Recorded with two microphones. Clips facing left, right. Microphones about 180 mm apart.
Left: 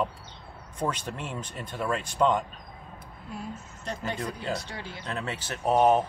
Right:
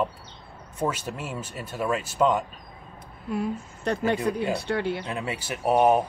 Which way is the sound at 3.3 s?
65° right (ahead or behind).